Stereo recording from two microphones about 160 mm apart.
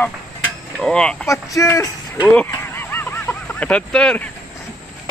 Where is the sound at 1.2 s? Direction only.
20° left (ahead or behind).